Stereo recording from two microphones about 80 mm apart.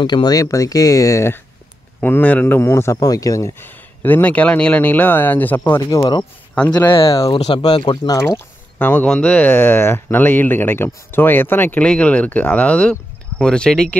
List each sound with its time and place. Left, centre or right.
0.0 s speech: left
0.4 s speech: left
2.0 s speech: left
2.4 s a man's voice: left
3.0 s speech: left
3.6 s speech: left
5.6 s speech: left
6.9 s speech: left
8.2 s speech: left
11.8 s speech: centre